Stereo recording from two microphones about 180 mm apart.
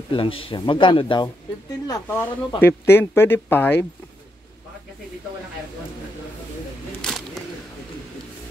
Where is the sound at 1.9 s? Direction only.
10° left (ahead or behind).